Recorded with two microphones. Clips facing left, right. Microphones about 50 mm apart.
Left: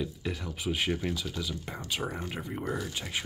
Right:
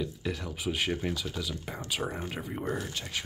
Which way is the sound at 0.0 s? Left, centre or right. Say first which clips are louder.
Right 1 dB; centre.